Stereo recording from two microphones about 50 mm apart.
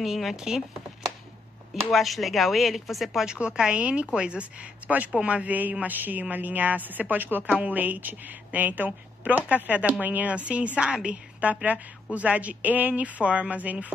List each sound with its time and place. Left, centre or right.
0.0 s speech: centre
1.9 s speech: centre
3.3 s a woman's voice: centre